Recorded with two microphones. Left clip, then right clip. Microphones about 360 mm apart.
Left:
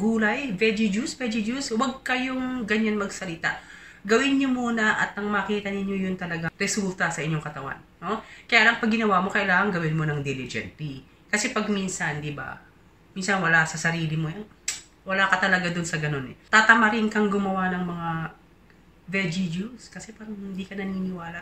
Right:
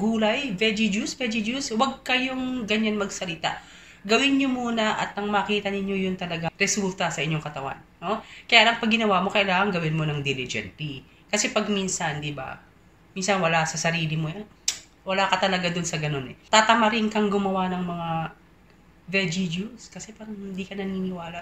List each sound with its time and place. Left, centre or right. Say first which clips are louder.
0.1 s speech: right 1 dB; centre